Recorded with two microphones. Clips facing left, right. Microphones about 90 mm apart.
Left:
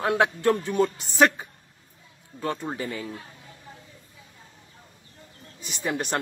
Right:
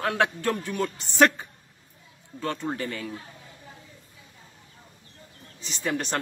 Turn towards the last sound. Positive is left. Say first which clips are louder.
# even
turn(degrees=15)  # may be behind; listen again after turning